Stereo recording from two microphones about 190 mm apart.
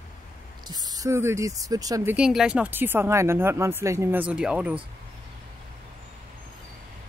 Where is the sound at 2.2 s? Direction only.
5° right (ahead or behind).